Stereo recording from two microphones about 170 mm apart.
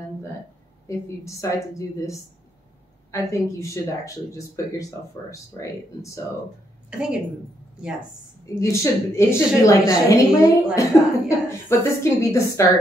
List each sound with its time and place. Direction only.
0.8 s a woman's voice: 20° left (ahead or behind)
6.9 s a woman's voice: 5° right (ahead or behind)
8.5 s a woman's voice: 20° left (ahead or behind)